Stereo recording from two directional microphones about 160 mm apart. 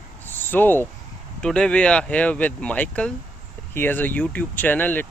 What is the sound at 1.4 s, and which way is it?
Speech, 5° left (ahead or behind).